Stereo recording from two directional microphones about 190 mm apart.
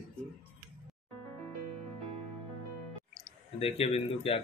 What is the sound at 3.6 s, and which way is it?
Speech, 30° left (ahead or behind).